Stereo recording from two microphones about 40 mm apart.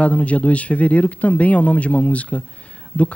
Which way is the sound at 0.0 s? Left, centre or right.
Left.